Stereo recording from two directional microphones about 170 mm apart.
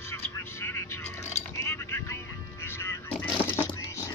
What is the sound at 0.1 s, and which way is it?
Vehicle, 15° left (ahead or behind).